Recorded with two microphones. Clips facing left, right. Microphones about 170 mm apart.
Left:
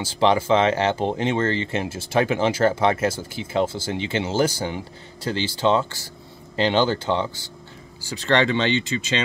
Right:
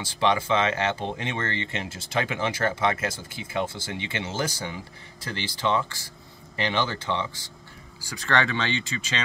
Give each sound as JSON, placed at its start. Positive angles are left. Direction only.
{"t": 0.2, "sound": "speech", "side_deg": 30}